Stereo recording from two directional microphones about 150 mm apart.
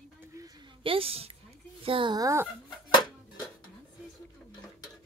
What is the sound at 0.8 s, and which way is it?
A woman's voice, 40° right (ahead or behind).